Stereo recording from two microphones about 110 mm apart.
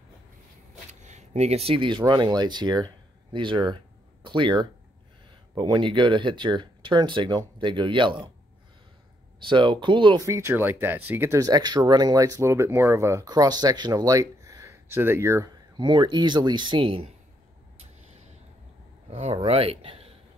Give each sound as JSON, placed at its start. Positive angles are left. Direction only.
{"t": 1.0, "sound": "speech", "side_deg": -85}
{"t": 9.4, "sound": "speech", "side_deg": -45}
{"t": 10.2, "sound": "speech", "side_deg": -25}
{"t": 11.3, "sound": "speech", "side_deg": -35}
{"t": 15.8, "sound": "speech", "side_deg": -45}
{"t": 19.0, "sound": "speech", "side_deg": -70}